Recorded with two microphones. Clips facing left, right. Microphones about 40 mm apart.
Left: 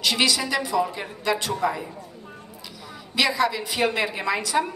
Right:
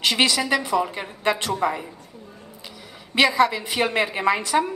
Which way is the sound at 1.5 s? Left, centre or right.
Right.